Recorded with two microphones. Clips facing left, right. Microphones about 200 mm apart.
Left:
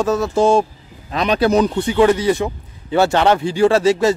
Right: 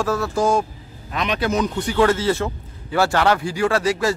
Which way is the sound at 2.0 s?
15° left (ahead or behind).